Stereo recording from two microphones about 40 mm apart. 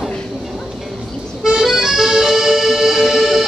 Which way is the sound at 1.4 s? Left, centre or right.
Centre.